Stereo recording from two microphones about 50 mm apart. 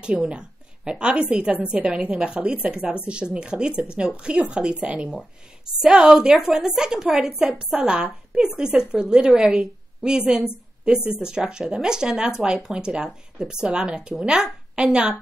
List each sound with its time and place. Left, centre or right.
0.3 s a woman's voice: centre
5.8 s a woman's voice: centre